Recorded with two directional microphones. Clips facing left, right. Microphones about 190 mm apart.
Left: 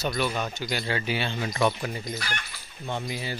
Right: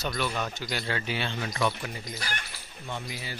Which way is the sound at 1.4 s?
25° left (ahead or behind).